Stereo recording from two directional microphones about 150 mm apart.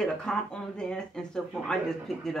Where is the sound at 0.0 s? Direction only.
5° left (ahead or behind).